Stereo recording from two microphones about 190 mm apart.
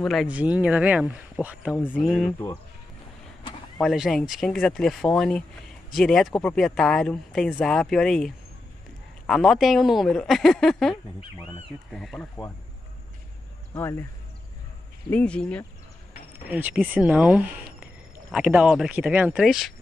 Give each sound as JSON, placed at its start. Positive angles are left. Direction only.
{"t": 0.0, "sound": "speech", "side_deg": 0}
{"t": 1.8, "sound": "speech", "side_deg": 10}
{"t": 2.3, "sound": "speech", "side_deg": 15}
{"t": 3.8, "sound": "speech", "side_deg": 0}
{"t": 13.7, "sound": "speech", "side_deg": 10}
{"t": 15.0, "sound": "speech", "side_deg": 5}
{"t": 16.4, "sound": "speech", "side_deg": -10}